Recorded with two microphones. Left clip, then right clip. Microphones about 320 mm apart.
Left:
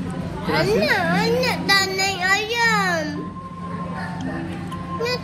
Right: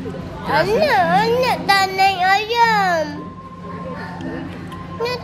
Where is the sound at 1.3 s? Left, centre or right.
Right.